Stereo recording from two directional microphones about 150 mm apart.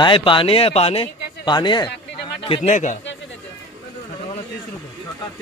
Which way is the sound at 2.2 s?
35° left (ahead or behind).